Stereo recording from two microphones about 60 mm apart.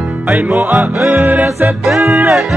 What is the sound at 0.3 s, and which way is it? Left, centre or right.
Music, right.